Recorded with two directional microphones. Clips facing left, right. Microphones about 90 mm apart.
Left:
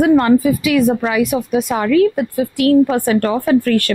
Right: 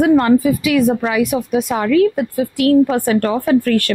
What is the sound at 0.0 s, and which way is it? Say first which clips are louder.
A woman's voice: even; 20° left (ahead or behind).